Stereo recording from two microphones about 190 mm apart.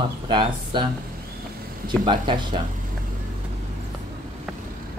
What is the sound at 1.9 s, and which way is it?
Speech, 25° right (ahead or behind).